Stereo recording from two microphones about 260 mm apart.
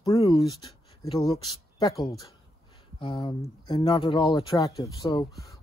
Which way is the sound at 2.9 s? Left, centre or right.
Centre.